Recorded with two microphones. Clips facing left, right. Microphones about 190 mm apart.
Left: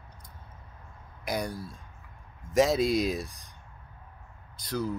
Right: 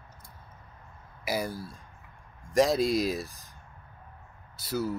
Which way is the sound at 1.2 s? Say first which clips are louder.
Right 1 dB; 5° right (ahead or behind).